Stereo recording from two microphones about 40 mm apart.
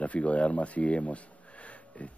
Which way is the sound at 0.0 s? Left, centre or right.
Left.